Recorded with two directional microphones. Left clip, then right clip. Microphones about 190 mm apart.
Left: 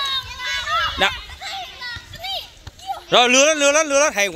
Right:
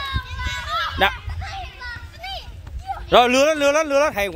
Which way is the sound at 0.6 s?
25° left (ahead or behind).